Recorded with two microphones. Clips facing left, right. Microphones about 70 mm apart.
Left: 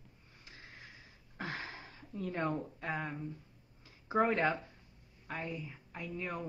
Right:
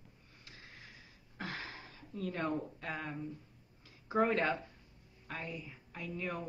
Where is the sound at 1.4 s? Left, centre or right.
Left.